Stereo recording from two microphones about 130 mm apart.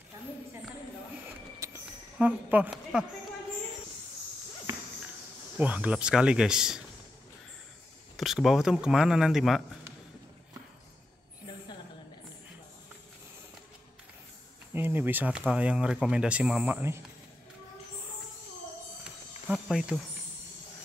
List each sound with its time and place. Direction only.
1.6 s a sound: 20° right (ahead or behind)
2.1 s speech: 10° right (ahead or behind)
5.6 s speech: 10° right (ahead or behind)
8.2 s speech: centre (ahead or behind)
14.7 s speech: 15° right (ahead or behind)
19.4 s cricket: 5° right (ahead or behind)